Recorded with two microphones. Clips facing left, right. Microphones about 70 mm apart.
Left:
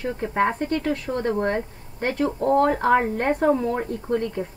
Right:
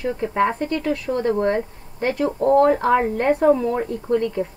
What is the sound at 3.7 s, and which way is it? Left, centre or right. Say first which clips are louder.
Speech: right 3 dB; left.